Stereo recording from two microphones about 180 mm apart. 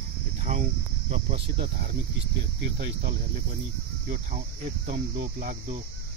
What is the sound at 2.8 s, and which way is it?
Cricket, 65° right (ahead or behind).